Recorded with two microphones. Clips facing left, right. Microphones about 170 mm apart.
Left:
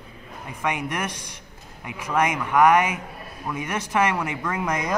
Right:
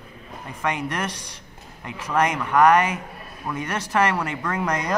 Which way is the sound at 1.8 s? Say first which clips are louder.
Right 1 dB; 5° left (ahead or behind).